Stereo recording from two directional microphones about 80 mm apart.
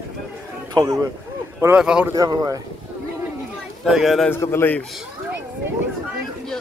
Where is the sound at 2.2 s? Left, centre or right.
Right.